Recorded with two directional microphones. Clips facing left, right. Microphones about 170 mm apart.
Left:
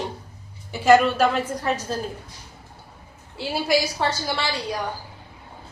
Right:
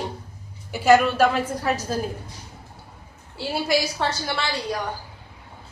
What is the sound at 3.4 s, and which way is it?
A woman's voice, centre (ahead or behind).